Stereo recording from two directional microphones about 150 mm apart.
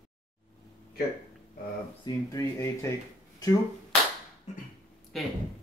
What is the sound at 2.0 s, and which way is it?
Speech, 25° left (ahead or behind).